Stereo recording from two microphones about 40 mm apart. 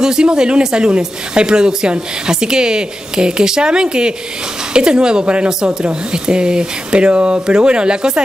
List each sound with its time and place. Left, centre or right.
0.0 s speech: centre